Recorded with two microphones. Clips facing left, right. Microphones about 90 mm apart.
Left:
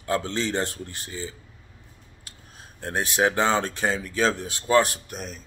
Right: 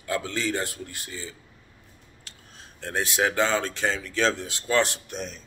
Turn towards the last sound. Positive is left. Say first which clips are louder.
# right 1 dB
turn(degrees=5)  # may be behind; listen again after turning